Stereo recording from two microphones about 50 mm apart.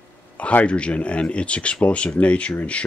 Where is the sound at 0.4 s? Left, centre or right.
Left.